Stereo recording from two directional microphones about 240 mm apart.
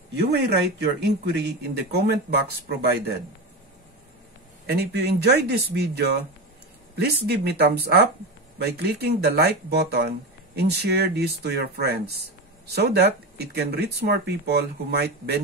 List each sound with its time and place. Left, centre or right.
0.1 s speech: right
4.6 s speech: right